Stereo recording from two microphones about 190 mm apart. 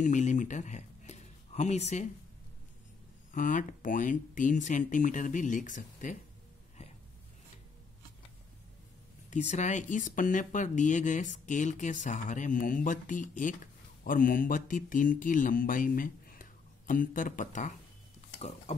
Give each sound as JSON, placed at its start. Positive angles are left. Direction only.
{"t": 0.0, "sound": "speech", "side_deg": 40}
{"t": 3.3, "sound": "speech", "side_deg": 45}
{"t": 9.3, "sound": "speech", "side_deg": 35}